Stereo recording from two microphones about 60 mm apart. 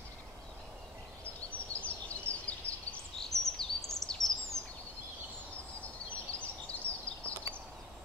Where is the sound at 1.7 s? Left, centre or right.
Left.